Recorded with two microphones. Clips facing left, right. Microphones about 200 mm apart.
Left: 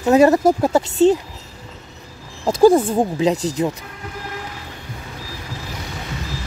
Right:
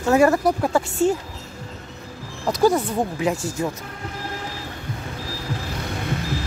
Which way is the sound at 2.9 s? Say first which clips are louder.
Left 5 dB; 25° left (ahead or behind).